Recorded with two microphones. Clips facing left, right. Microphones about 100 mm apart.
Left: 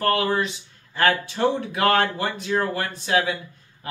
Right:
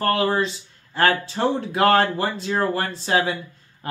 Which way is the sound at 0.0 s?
30° right (ahead or behind).